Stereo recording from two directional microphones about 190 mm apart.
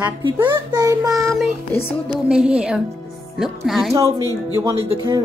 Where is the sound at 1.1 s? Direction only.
Centre (ahead or behind).